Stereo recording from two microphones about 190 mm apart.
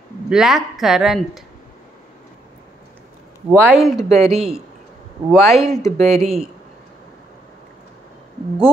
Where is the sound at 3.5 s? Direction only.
10° right (ahead or behind).